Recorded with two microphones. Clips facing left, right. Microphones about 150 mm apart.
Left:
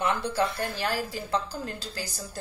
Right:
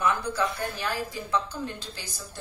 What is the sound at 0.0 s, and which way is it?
A woman's voice, 30° left (ahead or behind).